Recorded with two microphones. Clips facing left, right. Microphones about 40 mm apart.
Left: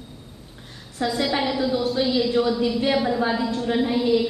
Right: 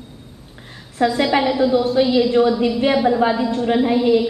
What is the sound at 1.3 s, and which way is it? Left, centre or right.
A woman's voice, right.